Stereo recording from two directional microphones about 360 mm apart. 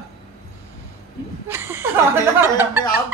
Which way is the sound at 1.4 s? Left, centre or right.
Centre.